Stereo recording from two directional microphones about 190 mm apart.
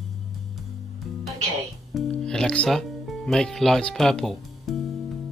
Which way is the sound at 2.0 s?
5° left (ahead or behind).